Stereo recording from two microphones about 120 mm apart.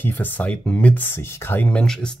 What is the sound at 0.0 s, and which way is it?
Speech, 15° left (ahead or behind).